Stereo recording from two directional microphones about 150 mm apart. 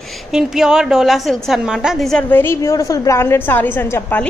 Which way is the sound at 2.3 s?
15° left (ahead or behind).